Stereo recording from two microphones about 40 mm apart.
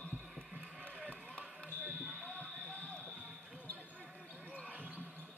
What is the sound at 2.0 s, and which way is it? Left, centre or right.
Basketball bounce, right.